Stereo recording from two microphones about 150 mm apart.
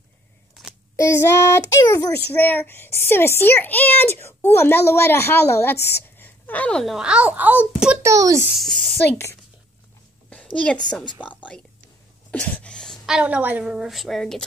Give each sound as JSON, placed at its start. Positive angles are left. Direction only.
{"t": 0.9, "sound": "a child's voice", "side_deg": 20}
{"t": 8.1, "sound": "a child's voice", "side_deg": -20}
{"t": 8.5, "sound": "speech", "side_deg": 0}
{"t": 10.3, "sound": "a woman's voice", "side_deg": 5}